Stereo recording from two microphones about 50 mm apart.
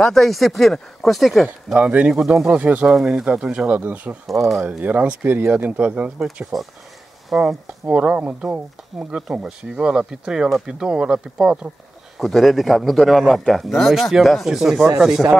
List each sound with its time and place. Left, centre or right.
0.0 s speech: centre
1.8 s speech: right
2.0 s speech: centre
2.5 s speech: right
2.9 s speech: centre
3.6 s speech: right
4.3 s speech: centre
4.6 s speech: right
6.5 s speech: centre
8.0 s speech: right
8.9 s speech: centre
9.4 s speech: centre
12.2 s speech: centre